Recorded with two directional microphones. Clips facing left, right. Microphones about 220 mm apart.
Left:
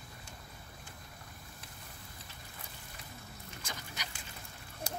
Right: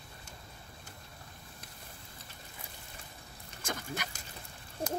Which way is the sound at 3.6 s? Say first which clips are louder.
Right 9 dB; 50° right (ahead or behind).